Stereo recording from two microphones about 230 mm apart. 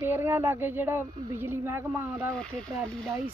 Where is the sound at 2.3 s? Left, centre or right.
Centre.